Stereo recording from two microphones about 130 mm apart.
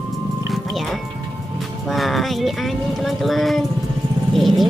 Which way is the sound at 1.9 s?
Centre (ahead or behind).